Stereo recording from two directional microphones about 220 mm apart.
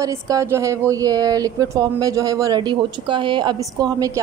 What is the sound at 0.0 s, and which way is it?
A woman's voice, 15° right (ahead or behind).